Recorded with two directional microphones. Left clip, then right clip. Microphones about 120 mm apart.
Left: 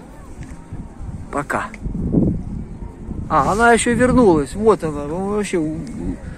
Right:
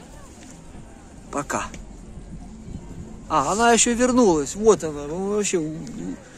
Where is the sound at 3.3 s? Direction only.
30° right (ahead or behind).